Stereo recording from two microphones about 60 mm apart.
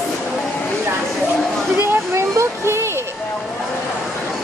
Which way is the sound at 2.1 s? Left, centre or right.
Right.